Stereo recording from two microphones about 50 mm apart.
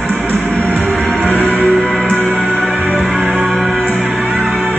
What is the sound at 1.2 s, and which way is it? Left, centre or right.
Music, right.